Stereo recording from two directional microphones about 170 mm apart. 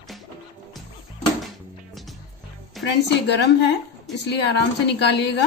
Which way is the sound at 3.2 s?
85° left.